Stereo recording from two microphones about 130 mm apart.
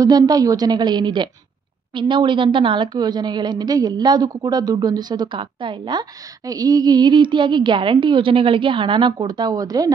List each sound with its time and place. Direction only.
0.0 s a woman's voice: 30° right (ahead or behind)